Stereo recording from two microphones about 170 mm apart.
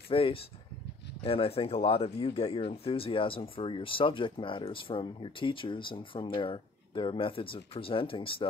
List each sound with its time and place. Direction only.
0.1 s speech: 35° left (ahead or behind)